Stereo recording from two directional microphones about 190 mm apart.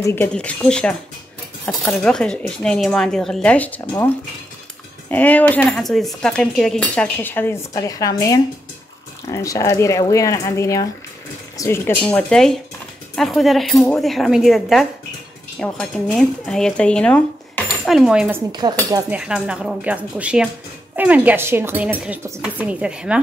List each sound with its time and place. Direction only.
0.0 s speech: 10° left (ahead or behind)
5.1 s speech: 10° left (ahead or behind)
18.5 s speech: 20° right (ahead or behind)
19.0 s speech: 5° right (ahead or behind)